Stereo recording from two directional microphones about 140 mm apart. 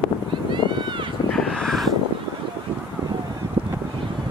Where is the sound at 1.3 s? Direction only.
5° left (ahead or behind).